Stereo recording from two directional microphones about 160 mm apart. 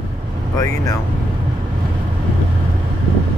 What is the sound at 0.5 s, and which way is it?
Speech, 20° left (ahead or behind).